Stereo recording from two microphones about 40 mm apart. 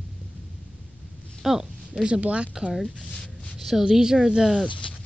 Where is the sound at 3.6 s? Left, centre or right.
Centre.